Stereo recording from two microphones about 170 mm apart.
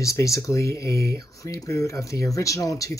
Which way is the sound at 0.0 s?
20° left (ahead or behind).